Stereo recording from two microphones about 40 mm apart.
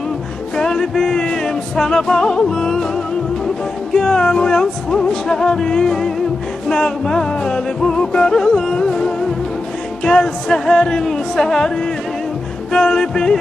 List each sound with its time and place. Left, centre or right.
0.6 s music: centre
3.9 s music: centre
12.7 s music: centre